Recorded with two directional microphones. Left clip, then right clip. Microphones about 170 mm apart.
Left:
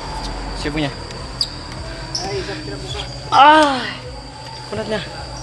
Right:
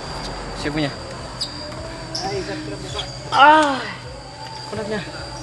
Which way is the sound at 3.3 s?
65° left (ahead or behind).